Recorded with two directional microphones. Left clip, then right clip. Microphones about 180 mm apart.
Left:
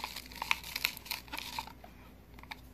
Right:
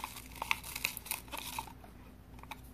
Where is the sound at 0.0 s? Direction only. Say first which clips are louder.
Left 2 dB; 5° left (ahead or behind).